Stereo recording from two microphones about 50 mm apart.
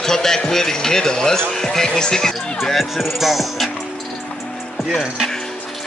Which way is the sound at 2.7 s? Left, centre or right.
Centre.